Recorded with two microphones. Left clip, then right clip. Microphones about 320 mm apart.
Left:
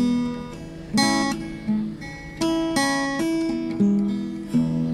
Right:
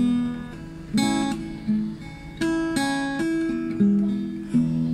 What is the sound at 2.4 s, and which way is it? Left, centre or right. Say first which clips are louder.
Music: left 2 dB; centre.